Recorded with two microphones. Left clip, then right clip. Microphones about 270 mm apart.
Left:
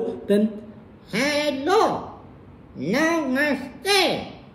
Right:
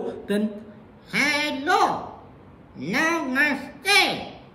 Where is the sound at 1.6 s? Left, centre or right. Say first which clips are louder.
Even; centre.